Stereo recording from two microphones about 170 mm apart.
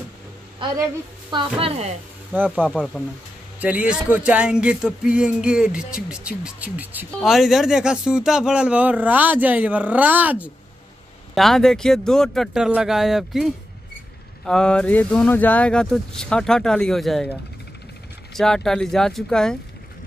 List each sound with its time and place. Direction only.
1.3 s speech: 30° right (ahead or behind)
2.3 s speech: 10° right (ahead or behind)
3.5 s speech: 10° right (ahead or behind)
11.3 s speech: centre (ahead or behind)